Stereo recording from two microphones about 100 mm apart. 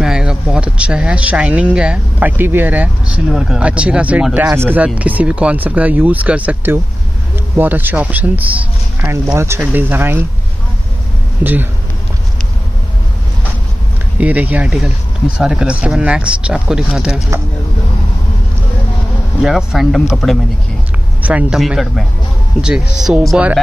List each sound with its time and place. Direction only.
0.0 s speech: 5° right (ahead or behind)
3.3 s speech: 5° right (ahead or behind); by 10.2 s 20° right (ahead or behind)
11.4 s speech: 15° right (ahead or behind)
14.2 s speech: 15° right (ahead or behind)
19.4 s speech: centre (ahead or behind)
21.2 s speech: 15° right (ahead or behind)
21.5 s speech: centre (ahead or behind)